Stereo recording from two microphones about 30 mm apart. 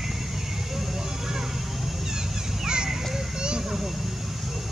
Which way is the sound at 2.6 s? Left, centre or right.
Right.